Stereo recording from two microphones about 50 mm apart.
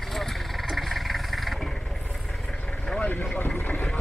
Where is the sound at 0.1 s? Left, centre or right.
Centre.